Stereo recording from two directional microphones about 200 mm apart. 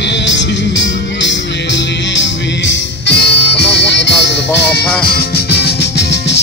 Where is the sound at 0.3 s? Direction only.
65° left (ahead or behind).